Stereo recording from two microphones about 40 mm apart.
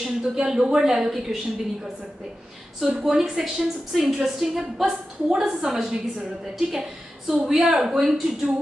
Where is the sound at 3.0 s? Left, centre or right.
Centre.